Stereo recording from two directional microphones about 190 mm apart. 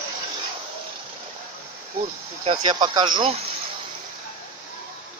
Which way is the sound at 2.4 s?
25° right (ahead or behind).